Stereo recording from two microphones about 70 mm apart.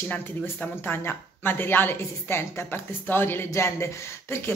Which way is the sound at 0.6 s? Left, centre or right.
Left.